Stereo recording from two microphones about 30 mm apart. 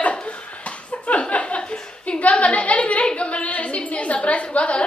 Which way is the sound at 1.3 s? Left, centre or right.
Left.